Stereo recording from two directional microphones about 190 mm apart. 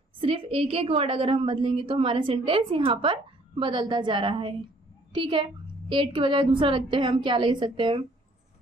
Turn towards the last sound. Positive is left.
turn(degrees=-25)  # may be behind; listen again after turning